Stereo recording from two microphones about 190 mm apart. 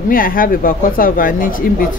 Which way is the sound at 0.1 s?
50° left (ahead or behind).